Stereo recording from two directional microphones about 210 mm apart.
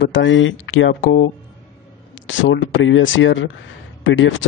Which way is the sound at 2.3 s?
65° left (ahead or behind).